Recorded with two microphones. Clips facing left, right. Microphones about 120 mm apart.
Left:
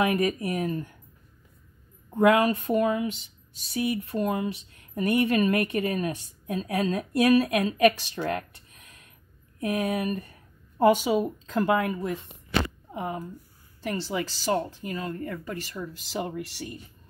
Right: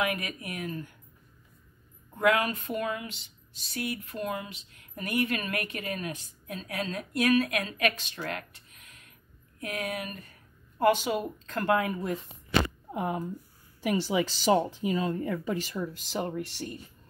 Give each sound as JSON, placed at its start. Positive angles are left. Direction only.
{"t": 0.2, "sound": "speech", "side_deg": 35}
{"t": 2.1, "sound": "speech", "side_deg": 25}
{"t": 9.6, "sound": "speech", "side_deg": 30}
{"t": 10.8, "sound": "speech", "side_deg": 10}
{"t": 15.7, "sound": "speech", "side_deg": 0}